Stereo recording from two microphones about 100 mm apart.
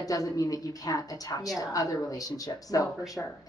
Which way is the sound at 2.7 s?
35° left (ahead or behind).